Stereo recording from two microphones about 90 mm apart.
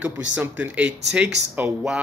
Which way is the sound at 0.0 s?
15° right (ahead or behind).